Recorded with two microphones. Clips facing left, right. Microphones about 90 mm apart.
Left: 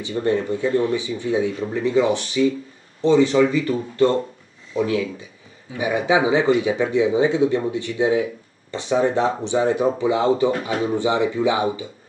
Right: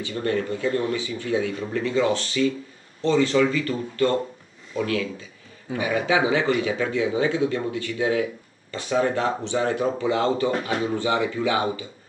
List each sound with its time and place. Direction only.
0.0 s speech: 20° left (ahead or behind)